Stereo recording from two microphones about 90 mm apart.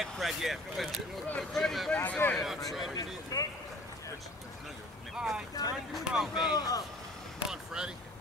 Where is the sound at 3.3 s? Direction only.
45° left (ahead or behind).